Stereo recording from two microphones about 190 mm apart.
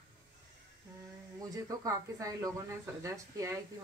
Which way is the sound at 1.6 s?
15° right (ahead or behind).